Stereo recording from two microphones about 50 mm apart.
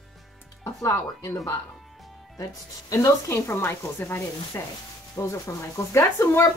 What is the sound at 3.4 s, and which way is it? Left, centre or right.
Speech, left.